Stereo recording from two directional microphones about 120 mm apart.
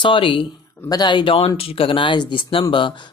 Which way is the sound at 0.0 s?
45° left (ahead or behind).